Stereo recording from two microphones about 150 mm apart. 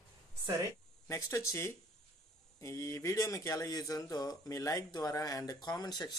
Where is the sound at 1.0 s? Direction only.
20° left (ahead or behind).